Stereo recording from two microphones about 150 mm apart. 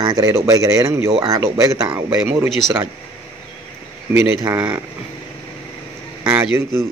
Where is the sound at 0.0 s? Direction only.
25° right (ahead or behind).